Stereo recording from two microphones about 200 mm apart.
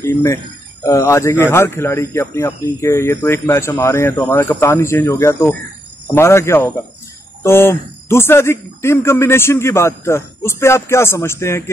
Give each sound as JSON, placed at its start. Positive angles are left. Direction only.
{"t": 0.0, "sound": "a man's voice", "side_deg": 15}